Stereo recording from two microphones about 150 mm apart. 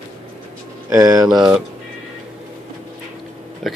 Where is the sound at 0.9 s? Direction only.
25° right (ahead or behind).